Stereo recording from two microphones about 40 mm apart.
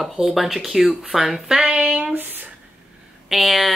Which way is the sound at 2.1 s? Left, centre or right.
Right.